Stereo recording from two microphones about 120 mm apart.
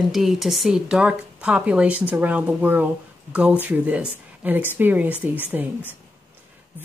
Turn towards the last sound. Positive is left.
turn(degrees=-10)  # may be behind; listen again after turning